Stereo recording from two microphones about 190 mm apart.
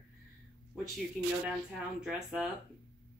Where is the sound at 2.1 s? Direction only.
5° right (ahead or behind).